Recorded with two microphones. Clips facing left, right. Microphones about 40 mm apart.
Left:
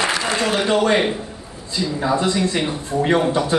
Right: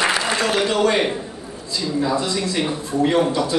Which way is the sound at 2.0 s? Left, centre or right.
Left.